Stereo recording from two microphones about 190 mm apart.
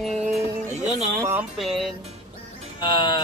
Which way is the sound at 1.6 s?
Centre (ahead or behind).